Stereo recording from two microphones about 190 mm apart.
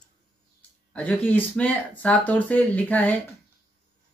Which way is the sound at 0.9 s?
5° left (ahead or behind).